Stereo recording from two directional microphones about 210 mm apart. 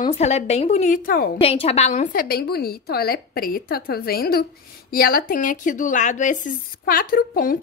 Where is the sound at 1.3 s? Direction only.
25° left (ahead or behind).